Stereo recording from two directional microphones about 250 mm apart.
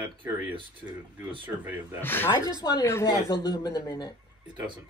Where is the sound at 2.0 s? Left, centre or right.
Centre.